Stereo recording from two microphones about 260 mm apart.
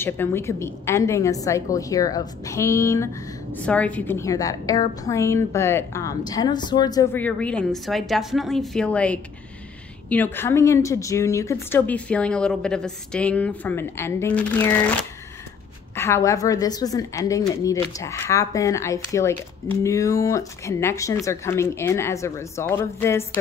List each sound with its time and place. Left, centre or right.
0.0 s a woman's voice: centre
15.9 s a woman's voice: centre